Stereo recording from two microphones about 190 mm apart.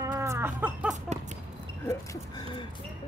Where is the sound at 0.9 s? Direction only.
40° right (ahead or behind).